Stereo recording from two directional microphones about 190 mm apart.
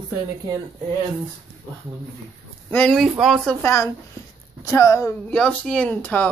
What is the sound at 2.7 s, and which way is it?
Speech, 10° left (ahead or behind).